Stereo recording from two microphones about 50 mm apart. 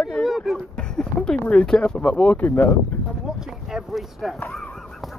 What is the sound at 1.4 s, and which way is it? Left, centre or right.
Speech, left.